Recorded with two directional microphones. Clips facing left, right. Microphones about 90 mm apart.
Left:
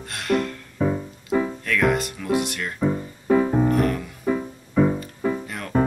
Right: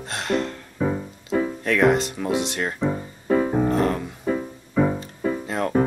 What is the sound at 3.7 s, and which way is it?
Music, 25° right (ahead or behind).